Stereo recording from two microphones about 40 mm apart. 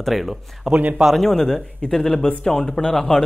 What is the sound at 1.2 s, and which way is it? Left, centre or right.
Speech, centre.